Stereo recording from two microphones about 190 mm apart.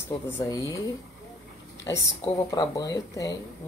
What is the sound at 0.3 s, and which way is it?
Speech, 15° left (ahead or behind).